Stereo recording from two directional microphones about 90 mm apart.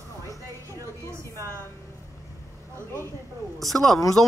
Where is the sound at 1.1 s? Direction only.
35° right (ahead or behind).